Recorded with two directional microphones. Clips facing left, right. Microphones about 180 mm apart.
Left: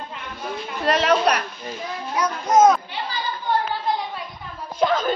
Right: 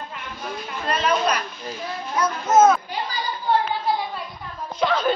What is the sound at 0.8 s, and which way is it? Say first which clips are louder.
Speech: left 3 dB; 85° left.